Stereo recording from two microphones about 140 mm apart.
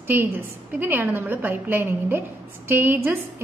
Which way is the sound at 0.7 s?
10° right (ahead or behind).